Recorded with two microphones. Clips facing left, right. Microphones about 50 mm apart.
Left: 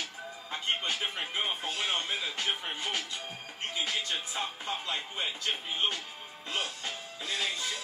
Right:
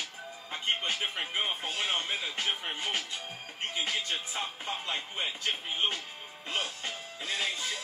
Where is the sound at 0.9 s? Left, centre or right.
Centre.